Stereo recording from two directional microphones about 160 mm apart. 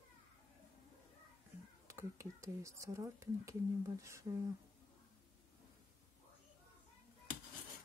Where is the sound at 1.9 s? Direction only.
20° right (ahead or behind).